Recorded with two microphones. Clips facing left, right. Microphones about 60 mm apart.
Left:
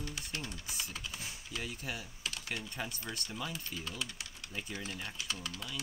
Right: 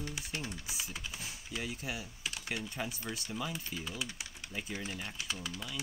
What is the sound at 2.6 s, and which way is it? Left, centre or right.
Speech, centre.